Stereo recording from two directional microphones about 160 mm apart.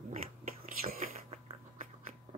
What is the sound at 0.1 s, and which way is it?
Whispering, 55° right (ahead or behind).